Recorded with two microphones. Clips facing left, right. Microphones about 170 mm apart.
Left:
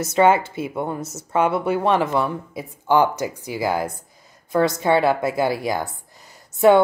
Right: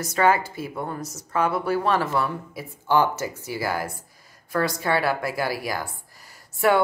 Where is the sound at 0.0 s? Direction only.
25° left (ahead or behind).